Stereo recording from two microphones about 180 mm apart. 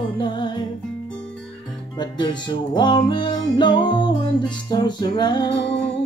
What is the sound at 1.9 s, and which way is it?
Music, 25° left (ahead or behind).